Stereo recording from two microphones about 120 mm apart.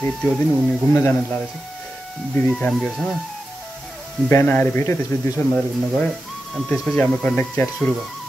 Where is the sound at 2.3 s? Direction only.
10° left (ahead or behind).